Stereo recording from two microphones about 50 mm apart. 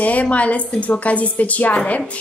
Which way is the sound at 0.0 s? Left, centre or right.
Left.